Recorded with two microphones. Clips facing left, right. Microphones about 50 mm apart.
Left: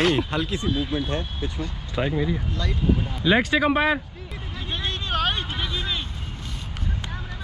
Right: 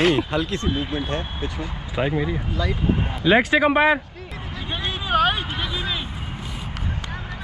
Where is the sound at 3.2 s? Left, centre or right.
Centre.